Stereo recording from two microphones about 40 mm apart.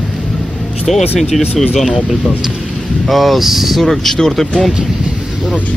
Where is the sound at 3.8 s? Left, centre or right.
Centre.